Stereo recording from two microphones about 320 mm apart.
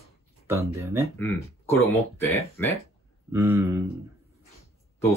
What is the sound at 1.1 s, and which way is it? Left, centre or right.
Speech, centre.